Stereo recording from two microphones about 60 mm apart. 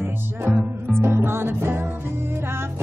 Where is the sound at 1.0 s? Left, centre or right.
Right.